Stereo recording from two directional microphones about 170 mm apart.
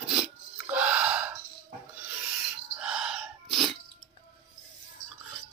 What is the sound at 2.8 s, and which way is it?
Sneeze, 5° right (ahead or behind).